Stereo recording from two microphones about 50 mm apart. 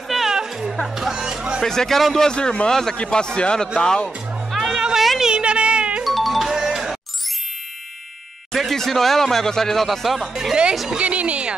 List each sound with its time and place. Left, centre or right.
0.1 s music: centre
0.7 s speech: centre
1.6 s speech: centre
2.2 s speech: centre
4.5 s music: centre
5.2 s music: right
6.0 s music: centre
8.5 s speech: centre
10.9 s a woman's voice: right